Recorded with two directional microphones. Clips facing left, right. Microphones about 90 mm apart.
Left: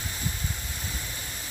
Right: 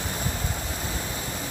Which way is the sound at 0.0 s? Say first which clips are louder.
Right 5 dB; 60° right (ahead or behind).